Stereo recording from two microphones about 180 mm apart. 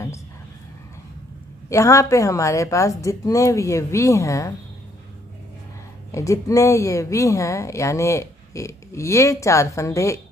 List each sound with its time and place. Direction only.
1.7 s a woman's voice: 15° left (ahead or behind)
6.1 s a woman's voice: 15° left (ahead or behind)